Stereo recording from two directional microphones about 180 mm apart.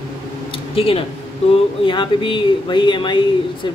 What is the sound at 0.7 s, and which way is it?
Speech, 30° left (ahead or behind).